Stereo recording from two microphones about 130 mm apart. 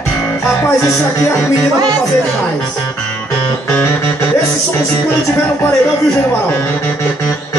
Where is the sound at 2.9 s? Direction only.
10° left (ahead or behind).